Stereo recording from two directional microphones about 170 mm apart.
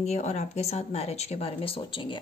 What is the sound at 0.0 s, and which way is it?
A woman's voice, 40° left (ahead or behind).